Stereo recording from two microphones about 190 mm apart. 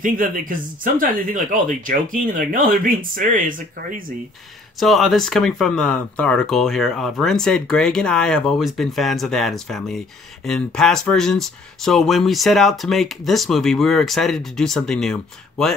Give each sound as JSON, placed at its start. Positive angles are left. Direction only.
{"t": 0.0, "sound": "speech", "side_deg": -45}
{"t": 4.7, "sound": "speech", "side_deg": 0}